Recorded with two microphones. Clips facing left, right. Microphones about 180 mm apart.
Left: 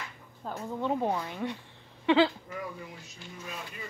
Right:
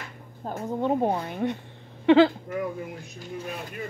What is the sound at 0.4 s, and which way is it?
Speech, 50° right (ahead or behind).